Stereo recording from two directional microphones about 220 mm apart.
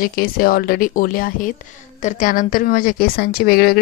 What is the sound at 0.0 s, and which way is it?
A woman's voice, 40° left (ahead or behind).